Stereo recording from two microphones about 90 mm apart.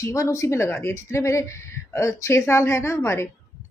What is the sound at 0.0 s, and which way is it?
A woman's voice, 35° left (ahead or behind).